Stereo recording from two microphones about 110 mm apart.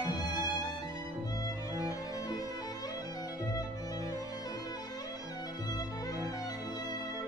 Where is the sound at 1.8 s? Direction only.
35° left (ahead or behind).